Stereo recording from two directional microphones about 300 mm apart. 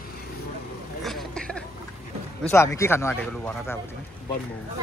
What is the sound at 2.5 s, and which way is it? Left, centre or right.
Speech, centre.